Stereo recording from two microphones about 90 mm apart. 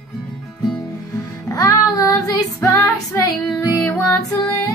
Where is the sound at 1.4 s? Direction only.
40° left (ahead or behind); by 4.0 s 20° left (ahead or behind).